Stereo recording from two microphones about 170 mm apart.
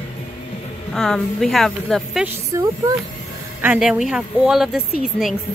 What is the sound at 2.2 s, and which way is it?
A woman's voice, 20° right (ahead or behind).